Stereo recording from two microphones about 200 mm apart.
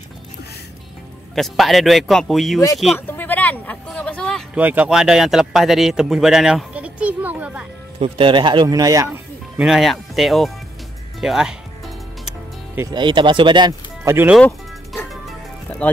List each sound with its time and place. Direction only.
1.3 s speech: centre (ahead or behind)
3.1 s a sound: 10° left (ahead or behind)
4.6 s speech: 5° right (ahead or behind)
8.0 s speech: 25° right (ahead or behind); by 10.5 s centre (ahead or behind)
11.1 s music: centre (ahead or behind)
12.8 s speech: 20° right (ahead or behind)
14.3 s music: 5° left (ahead or behind)